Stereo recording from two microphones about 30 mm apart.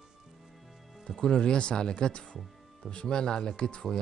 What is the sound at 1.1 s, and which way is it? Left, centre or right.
Speech, left.